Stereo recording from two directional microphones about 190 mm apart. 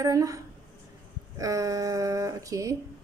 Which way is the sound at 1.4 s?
15° right (ahead or behind).